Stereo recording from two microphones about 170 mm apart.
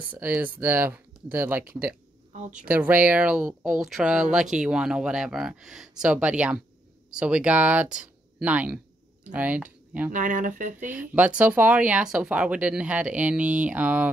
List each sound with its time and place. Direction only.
0.1 s speech: 10° right (ahead or behind)
2.3 s speech: 45° right (ahead or behind)
2.7 s speech: 10° right (ahead or behind)
10.1 s speech: 50° right (ahead or behind)
11.0 s speech: 10° right (ahead or behind)